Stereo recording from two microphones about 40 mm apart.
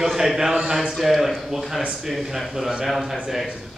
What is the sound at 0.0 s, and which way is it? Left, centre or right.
Speech, centre.